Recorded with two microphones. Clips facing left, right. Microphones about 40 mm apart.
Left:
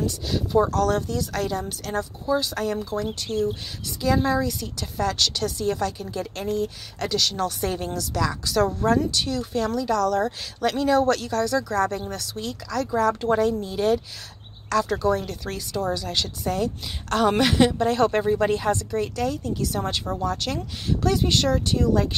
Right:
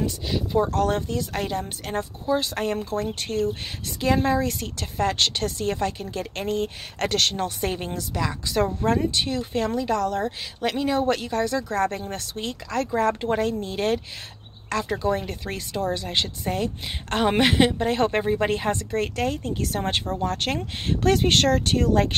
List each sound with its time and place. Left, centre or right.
0.0 s speech: centre
0.7 s a woman's voice: right
4.9 s a woman's voice: right
7.3 s a woman's voice: right